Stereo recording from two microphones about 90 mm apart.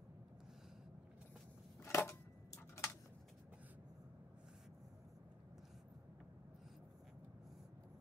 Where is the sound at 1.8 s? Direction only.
30° left (ahead or behind).